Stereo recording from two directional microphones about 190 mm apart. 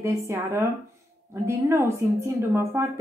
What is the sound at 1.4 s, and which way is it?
A woman's voice, 15° right (ahead or behind).